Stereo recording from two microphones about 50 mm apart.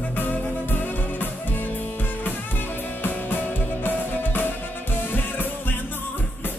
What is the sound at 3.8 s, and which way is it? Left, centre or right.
Music, left.